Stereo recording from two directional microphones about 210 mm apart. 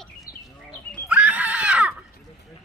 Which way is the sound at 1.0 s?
5° right (ahead or behind).